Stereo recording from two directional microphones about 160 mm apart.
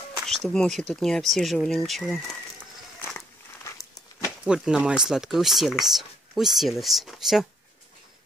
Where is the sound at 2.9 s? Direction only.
15° left (ahead or behind).